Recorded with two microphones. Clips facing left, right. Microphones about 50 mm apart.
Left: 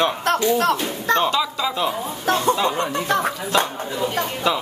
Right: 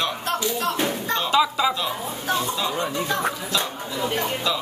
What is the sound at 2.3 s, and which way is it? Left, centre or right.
Speech, left.